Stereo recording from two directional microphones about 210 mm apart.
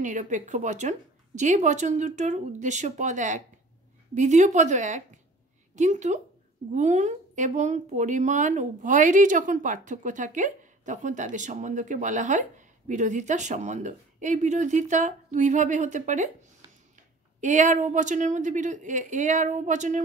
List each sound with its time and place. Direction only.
0.0 s speech: 35° right (ahead or behind)
17.4 s speech: 35° right (ahead or behind)